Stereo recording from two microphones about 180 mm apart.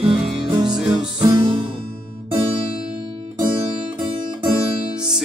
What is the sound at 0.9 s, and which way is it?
Music, 25° right (ahead or behind).